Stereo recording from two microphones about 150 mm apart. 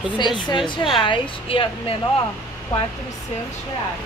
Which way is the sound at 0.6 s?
30° left (ahead or behind).